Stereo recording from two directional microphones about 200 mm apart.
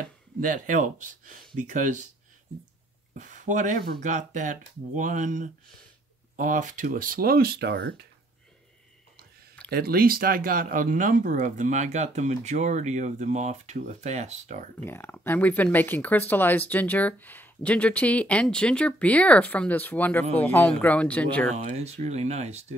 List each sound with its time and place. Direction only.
0.4 s speech: 40° right (ahead or behind)
3.2 s speech: 40° right (ahead or behind); by 8.1 s 55° right (ahead or behind)
9.7 s speech: 50° right (ahead or behind)
14.9 s speech: 10° left (ahead or behind)
21.6 s speech: 35° right (ahead or behind)